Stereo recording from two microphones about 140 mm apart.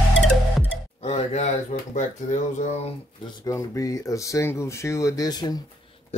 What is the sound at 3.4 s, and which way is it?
Speech, 25° left (ahead or behind).